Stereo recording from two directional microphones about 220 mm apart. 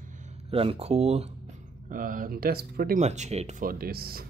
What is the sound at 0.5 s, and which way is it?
Speech, 25° right (ahead or behind).